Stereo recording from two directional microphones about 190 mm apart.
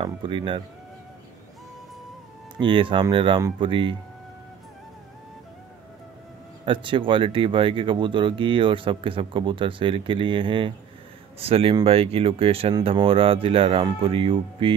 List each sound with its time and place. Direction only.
0.0 s speech: 25° right (ahead or behind)
2.6 s speech: 25° right (ahead or behind)
6.6 s speech: 25° right (ahead or behind)